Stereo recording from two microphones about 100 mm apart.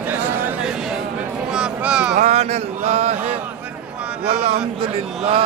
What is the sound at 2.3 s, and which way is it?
Mantra, 90° right.